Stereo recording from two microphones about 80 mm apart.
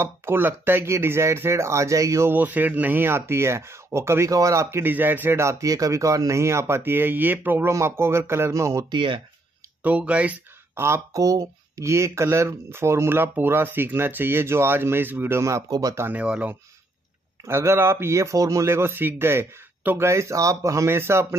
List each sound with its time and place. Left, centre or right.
0.0 s speech: right
2.3 s speech: right
5.4 s speech: right
8.9 s speech: right
9.8 s speech: centre
10.7 s a sound: right
11.1 s speech: right
15.7 s speech: right
16.1 s speech: centre
17.5 s speech: right
20.1 s speech: right